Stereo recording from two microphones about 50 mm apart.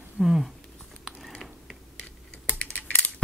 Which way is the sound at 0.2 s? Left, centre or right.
Centre.